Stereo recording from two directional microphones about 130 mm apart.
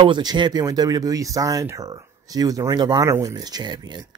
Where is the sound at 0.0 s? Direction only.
35° right (ahead or behind).